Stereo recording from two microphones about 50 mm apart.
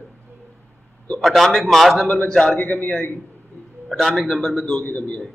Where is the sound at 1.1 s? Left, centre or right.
Centre.